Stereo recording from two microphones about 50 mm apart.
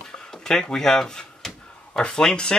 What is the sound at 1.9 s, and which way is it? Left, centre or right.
Speech, centre.